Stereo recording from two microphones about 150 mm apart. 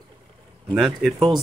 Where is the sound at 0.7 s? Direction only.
Centre (ahead or behind).